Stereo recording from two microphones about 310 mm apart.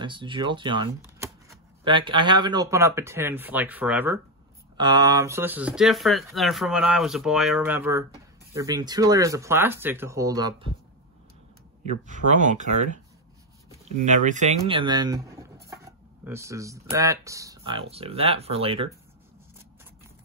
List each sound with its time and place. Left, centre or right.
0.0 s speech: centre
11.8 s speech: right